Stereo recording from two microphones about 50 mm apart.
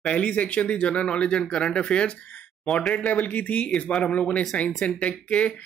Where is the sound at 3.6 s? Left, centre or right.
Centre.